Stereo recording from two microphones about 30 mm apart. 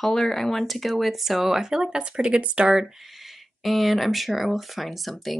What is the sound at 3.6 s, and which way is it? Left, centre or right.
Speech, centre.